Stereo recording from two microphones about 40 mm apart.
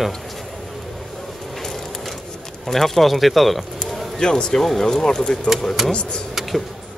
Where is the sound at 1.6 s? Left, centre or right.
Centre.